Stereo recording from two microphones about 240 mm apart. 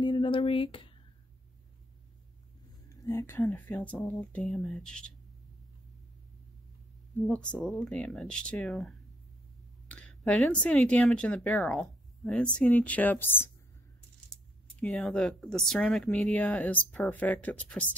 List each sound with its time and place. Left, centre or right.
0.0 s speech: centre
3.0 s speech: centre
7.2 s speech: centre